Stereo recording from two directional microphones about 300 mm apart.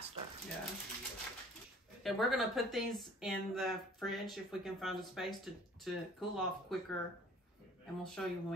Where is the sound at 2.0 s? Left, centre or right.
Centre.